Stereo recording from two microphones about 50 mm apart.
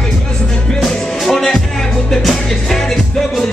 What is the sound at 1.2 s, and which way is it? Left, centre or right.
Music, centre.